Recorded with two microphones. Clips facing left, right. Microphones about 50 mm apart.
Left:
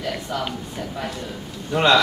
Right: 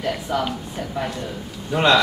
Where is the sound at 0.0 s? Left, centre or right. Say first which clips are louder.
Right 3 dB; centre.